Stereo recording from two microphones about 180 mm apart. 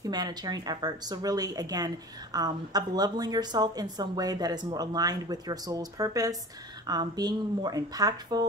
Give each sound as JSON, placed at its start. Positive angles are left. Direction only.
{"t": 0.0, "sound": "a woman's voice", "side_deg": -20}